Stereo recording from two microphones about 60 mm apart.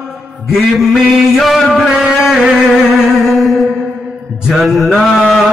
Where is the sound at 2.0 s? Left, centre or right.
Centre.